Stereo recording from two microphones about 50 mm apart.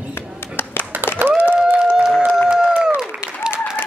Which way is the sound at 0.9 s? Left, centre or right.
Right.